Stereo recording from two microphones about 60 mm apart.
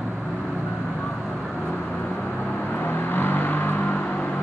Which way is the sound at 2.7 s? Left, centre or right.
Left.